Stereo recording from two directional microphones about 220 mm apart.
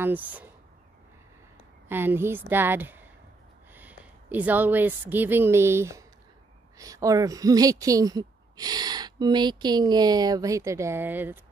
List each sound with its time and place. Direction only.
0.0 s a woman's voice: 10° right (ahead or behind)
1.9 s a woman's voice: 10° right (ahead or behind)